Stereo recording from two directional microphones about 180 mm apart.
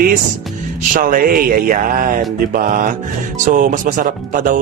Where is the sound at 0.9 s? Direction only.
50° right (ahead or behind).